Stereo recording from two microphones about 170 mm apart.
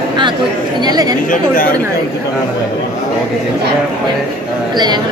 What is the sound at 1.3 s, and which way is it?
Speech, 50° left (ahead or behind).